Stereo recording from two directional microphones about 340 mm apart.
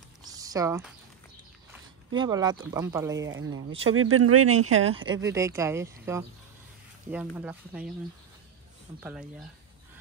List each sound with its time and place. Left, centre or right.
0.2 s a sound: centre
2.1 s speech: centre
3.3 s speech: right
4.9 s speech: centre
7.3 s speech: centre